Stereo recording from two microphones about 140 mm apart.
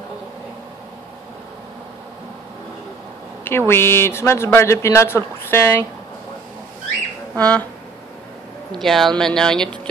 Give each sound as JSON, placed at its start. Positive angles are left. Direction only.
{"t": 3.4, "sound": "a man's voice", "side_deg": 15}
{"t": 7.3, "sound": "a man's voice", "side_deg": 10}
{"t": 8.7, "sound": "speech", "side_deg": 0}